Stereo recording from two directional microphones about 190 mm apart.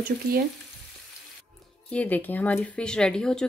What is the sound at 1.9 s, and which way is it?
Speech, 10° left (ahead or behind).